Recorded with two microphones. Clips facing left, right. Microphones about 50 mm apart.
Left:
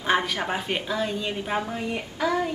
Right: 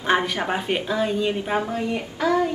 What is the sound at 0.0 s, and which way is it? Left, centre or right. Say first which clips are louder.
A woman's voice: right 2 dB; centre.